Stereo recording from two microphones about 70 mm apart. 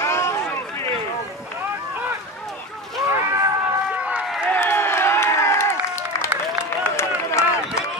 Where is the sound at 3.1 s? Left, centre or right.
Right.